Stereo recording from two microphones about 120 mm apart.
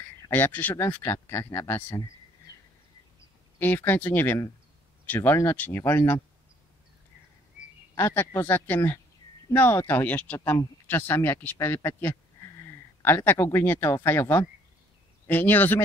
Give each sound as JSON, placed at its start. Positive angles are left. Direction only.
{"t": 0.3, "sound": "speech", "side_deg": 15}
{"t": 3.5, "sound": "speech", "side_deg": 15}
{"t": 8.1, "sound": "speech", "side_deg": 20}
{"t": 15.2, "sound": "speech", "side_deg": 15}